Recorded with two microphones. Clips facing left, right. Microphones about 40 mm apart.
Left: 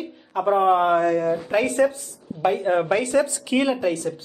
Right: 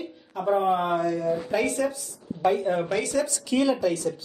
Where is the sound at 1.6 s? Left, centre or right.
Left.